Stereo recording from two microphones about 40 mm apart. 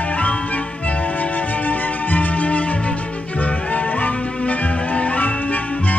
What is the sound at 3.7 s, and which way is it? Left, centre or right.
Music, left.